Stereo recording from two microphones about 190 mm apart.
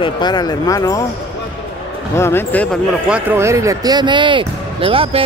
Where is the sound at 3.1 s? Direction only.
10° right (ahead or behind).